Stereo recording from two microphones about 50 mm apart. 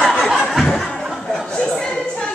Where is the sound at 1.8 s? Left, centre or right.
Centre.